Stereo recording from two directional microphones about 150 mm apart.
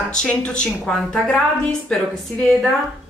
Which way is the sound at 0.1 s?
5° left (ahead or behind).